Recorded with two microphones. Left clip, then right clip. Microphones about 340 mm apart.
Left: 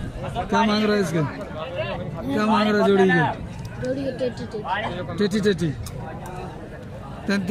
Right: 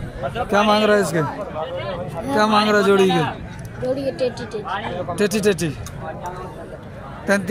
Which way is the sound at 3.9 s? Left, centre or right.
Centre.